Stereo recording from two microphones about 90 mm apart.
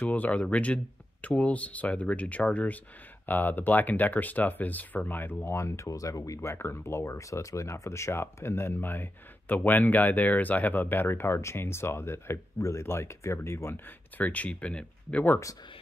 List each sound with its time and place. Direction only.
0.0 s speech: 15° left (ahead or behind)